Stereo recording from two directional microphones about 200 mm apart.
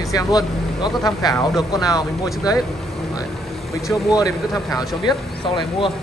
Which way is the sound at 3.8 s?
Centre (ahead or behind).